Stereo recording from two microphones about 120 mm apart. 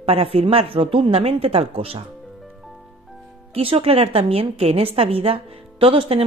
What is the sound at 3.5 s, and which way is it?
A woman's voice, 50° right (ahead or behind).